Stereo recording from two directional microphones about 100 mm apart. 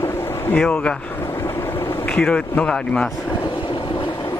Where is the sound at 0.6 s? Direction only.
10° left (ahead or behind).